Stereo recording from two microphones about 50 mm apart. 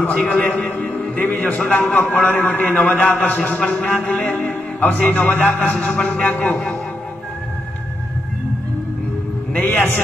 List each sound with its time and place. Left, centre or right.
0.2 s a man's voice: left
6.2 s a man's voice: left
6.5 s a man's voice: left
9.5 s a man's voice: left